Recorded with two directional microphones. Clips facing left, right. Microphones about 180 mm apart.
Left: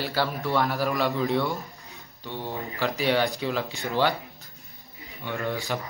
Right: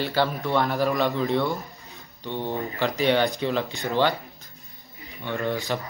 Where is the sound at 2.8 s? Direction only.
Centre (ahead or behind).